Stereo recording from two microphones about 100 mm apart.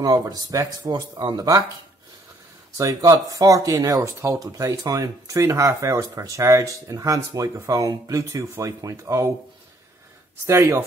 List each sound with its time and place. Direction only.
0.0 s speech: 40° right (ahead or behind)
2.8 s speech: 35° right (ahead or behind)
10.4 s speech: 25° right (ahead or behind)